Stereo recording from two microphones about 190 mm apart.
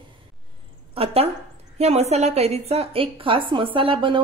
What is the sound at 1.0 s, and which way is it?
A woman's voice, 30° right (ahead or behind).